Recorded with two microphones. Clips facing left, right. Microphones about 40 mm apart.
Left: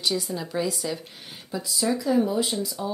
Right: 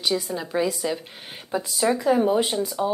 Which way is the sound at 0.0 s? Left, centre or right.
Centre.